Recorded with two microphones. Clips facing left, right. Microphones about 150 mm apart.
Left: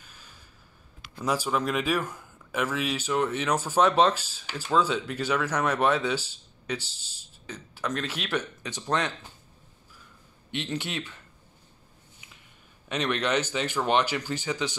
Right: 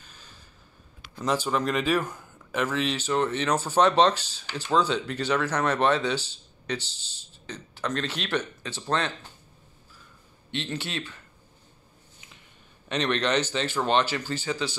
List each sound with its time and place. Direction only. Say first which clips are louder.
1.1 s speech: right 1 dB; 5° left (ahead or behind)
10.5 s speech: even; 15° left (ahead or behind)
12.8 s speech: right 2 dB; 5° left (ahead or behind)